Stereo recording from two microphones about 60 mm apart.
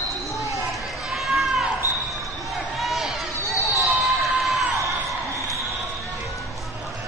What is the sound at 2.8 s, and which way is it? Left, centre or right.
Run, centre.